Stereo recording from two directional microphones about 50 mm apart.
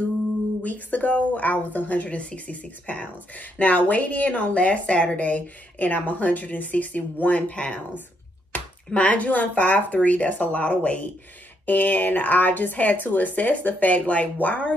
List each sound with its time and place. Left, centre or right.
0.6 s speech: left